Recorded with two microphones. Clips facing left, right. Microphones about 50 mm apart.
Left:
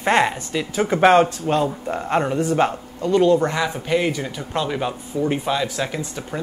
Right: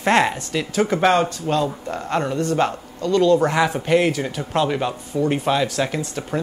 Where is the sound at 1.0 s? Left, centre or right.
Centre.